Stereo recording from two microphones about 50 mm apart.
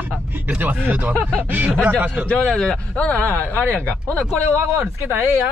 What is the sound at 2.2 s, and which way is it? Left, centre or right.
Speech, centre.